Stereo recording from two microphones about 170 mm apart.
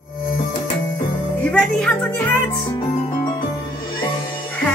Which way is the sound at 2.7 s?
30° left (ahead or behind).